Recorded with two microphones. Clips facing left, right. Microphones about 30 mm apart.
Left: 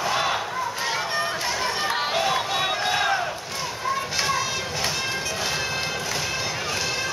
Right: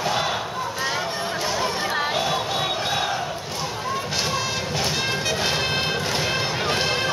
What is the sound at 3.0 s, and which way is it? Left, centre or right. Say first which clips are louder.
Battle cry: left 2 dB; left.